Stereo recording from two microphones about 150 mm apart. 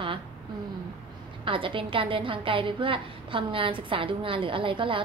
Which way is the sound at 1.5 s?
35° right (ahead or behind).